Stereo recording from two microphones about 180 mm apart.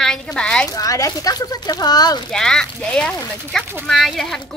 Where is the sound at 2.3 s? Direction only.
5° left (ahead or behind).